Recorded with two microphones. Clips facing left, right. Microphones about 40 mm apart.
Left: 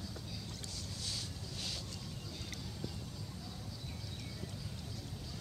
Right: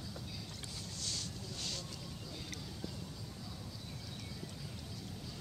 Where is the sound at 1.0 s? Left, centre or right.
Centre.